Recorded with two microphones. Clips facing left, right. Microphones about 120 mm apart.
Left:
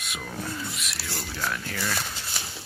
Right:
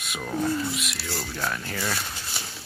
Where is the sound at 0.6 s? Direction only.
Centre (ahead or behind).